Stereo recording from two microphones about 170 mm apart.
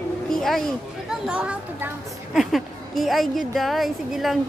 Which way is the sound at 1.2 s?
5° right (ahead or behind).